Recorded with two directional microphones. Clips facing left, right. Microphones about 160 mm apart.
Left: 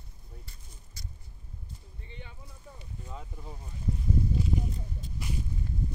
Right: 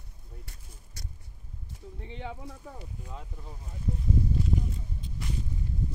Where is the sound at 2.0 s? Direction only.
90° right.